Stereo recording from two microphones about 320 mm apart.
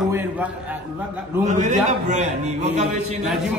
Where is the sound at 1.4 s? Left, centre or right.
Right.